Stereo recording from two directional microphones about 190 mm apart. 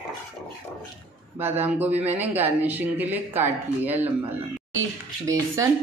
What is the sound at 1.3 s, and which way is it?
Speech, 10° right (ahead or behind).